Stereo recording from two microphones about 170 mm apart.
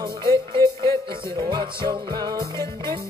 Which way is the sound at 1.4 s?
30° right (ahead or behind).